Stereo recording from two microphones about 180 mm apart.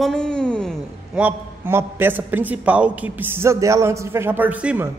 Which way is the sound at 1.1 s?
10° right (ahead or behind).